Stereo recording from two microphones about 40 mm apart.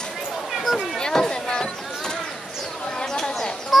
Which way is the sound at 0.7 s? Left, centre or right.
Centre.